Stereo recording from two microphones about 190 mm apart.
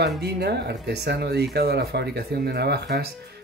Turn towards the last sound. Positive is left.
turn(degrees=-60)  # may be behind; listen again after turning